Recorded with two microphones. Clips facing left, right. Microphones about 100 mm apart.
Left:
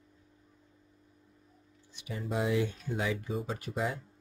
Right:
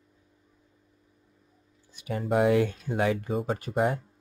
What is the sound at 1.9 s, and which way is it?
Speech, 50° right (ahead or behind).